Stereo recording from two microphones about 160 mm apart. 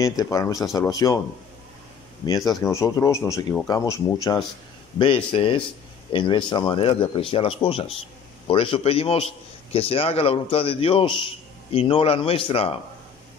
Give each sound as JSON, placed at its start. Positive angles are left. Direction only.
{"t": 0.0, "sound": "a man's voice", "side_deg": 20}
{"t": 2.2, "sound": "a man's voice", "side_deg": 20}
{"t": 4.9, "sound": "a man's voice", "side_deg": 35}